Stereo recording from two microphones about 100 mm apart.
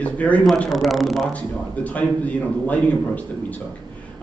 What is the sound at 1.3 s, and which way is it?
A man's voice, 15° left (ahead or behind).